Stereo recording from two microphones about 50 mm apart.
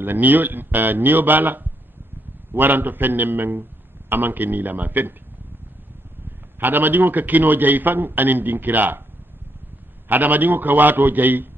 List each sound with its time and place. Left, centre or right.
0.0 s a man's voice: right
6.6 s a man's voice: right
10.0 s a man's voice: right